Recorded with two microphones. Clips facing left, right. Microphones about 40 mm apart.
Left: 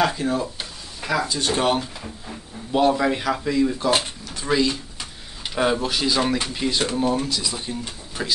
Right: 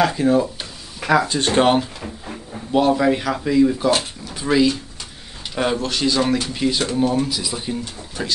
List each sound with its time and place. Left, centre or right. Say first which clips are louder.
0.2 s speech: right 7 dB; centre
1.3 s speech: right 5 dB; right
2.7 s speech: right 3 dB; centre
5.5 s speech: even; centre
7.0 s speech: right 3 dB; centre